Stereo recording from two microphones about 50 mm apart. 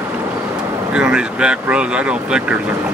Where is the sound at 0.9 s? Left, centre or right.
Centre.